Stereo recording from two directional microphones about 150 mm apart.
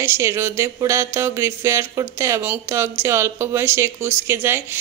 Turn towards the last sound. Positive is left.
turn(degrees=-15)  # may be behind; listen again after turning